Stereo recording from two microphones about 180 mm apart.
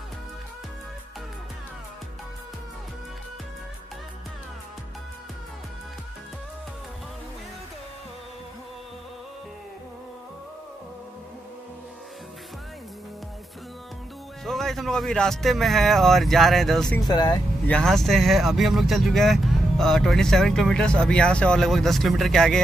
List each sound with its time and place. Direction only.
14.4 s speech: centre (ahead or behind)
17.1 s speech: 20° left (ahead or behind)
17.6 s speech: 5° left (ahead or behind)